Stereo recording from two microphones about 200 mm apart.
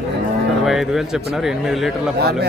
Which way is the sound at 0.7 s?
Centre (ahead or behind).